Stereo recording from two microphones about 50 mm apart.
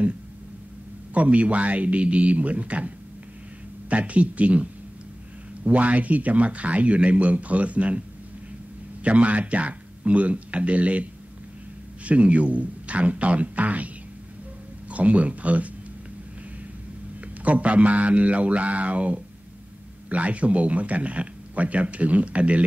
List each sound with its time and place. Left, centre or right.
1.1 s a man's voice: right
3.9 s a man's voice: right
9.0 s a man's voice: right
17.2 s a man's voice: right